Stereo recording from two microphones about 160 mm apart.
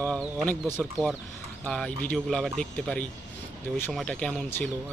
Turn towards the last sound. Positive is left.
turn(degrees=10)  # may be behind; listen again after turning